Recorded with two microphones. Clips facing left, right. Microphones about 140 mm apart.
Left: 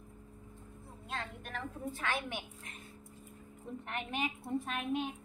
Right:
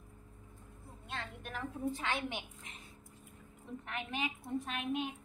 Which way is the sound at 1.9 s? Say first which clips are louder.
Right 1 dB; 20° right (ahead or behind).